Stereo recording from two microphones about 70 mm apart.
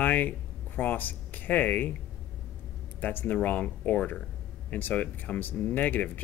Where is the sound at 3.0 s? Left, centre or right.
Left.